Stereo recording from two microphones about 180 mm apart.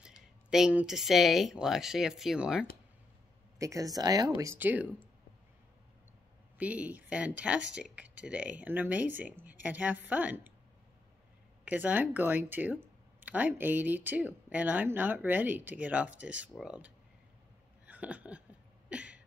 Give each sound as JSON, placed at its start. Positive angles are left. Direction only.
{"t": 0.0, "sound": "speech", "side_deg": -5}
{"t": 3.5, "sound": "speech", "side_deg": -20}
{"t": 6.6, "sound": "speech", "side_deg": -10}
{"t": 11.6, "sound": "speech", "side_deg": -10}
{"t": 17.8, "sound": "a sound", "side_deg": -10}
{"t": 18.9, "sound": "cough", "side_deg": -5}